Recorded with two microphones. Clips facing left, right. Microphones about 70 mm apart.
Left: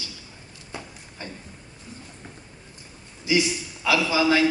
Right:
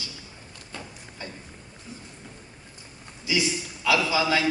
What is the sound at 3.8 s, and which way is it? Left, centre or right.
Speech, left.